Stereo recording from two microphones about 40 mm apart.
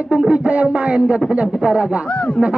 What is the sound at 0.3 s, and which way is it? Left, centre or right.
A man's voice, right.